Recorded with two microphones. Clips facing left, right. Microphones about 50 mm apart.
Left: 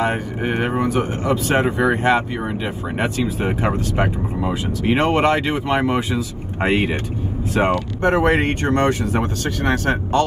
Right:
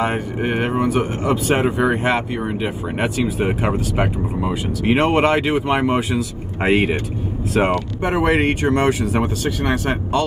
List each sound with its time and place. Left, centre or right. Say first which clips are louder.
0.0 s speech: even; centre
1.2 s speech: even; centre
1.6 s speech: even; centre
8.0 s speech: left 1 dB; centre